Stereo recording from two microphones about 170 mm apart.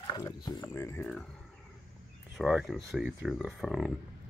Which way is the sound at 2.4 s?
Centre (ahead or behind).